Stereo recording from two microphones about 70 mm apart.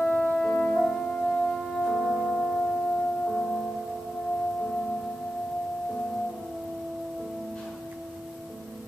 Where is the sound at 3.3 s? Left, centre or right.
Centre.